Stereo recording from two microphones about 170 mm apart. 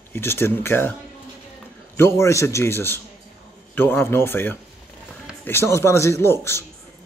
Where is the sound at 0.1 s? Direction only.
15° left (ahead or behind).